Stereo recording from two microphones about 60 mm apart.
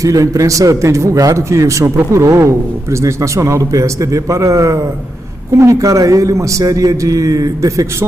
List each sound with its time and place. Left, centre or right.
0.0 s a man's voice: right